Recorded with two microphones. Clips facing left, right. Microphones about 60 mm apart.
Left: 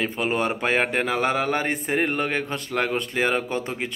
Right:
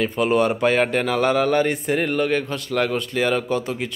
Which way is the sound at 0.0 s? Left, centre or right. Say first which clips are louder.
Right 5 dB; left.